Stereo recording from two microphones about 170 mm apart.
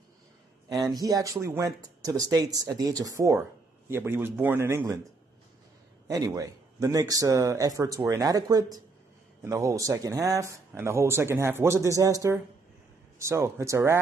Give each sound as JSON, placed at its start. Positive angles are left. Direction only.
{"t": 0.8, "sound": "speech", "side_deg": -20}
{"t": 6.0, "sound": "speech", "side_deg": -20}